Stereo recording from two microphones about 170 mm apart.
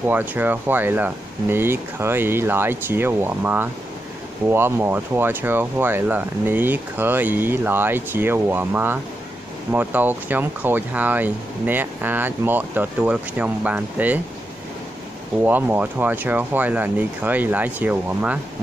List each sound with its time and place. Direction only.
0.1 s speech: 10° right (ahead or behind)
15.4 s speech: 10° right (ahead or behind)